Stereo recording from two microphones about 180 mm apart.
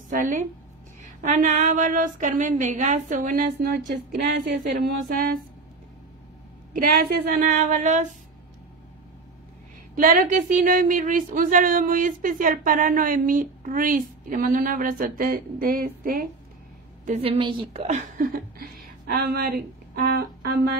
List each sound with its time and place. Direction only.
0.1 s speech: 45° right (ahead or behind)
6.7 s speech: 50° right (ahead or behind)
9.9 s speech: 45° right (ahead or behind)
17.2 s a woman's voice: 30° right (ahead or behind)
17.8 s a woman's voice: 45° right (ahead or behind)